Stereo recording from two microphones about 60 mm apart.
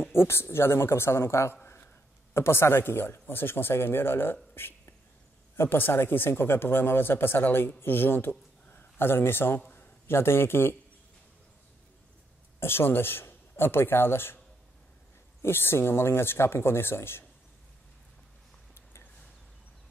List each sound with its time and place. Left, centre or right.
0.0 s a man's voice: left
12.5 s a man's voice: left
15.4 s speech: left